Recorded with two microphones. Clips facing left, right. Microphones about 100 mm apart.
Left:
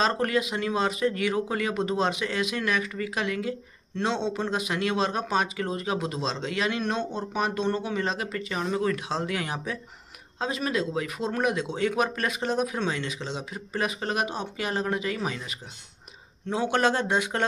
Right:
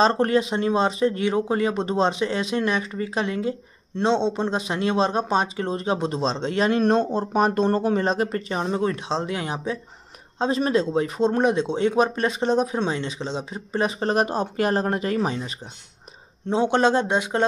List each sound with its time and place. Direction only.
0.0 s speech: 30° right (ahead or behind)